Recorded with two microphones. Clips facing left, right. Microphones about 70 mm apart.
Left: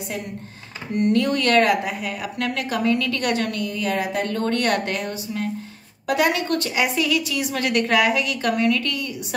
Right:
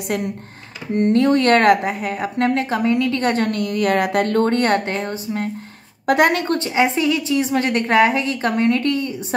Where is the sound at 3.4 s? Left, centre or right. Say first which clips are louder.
Right 6 dB; right.